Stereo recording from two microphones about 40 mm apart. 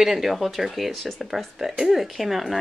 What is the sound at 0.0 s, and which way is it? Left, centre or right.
Speech, centre.